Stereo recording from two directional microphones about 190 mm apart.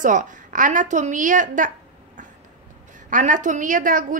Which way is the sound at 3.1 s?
40° right (ahead or behind).